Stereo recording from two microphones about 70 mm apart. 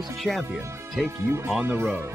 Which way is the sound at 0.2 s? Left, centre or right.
Centre.